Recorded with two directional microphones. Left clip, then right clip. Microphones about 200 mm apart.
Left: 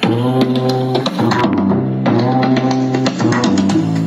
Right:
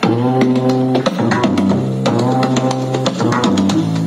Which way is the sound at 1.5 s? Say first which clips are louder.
Even; 25° right (ahead or behind).